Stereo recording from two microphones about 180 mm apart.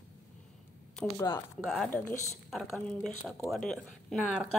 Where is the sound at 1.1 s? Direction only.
20° left (ahead or behind).